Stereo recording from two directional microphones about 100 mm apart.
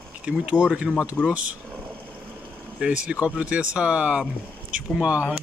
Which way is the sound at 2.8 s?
10° right (ahead or behind).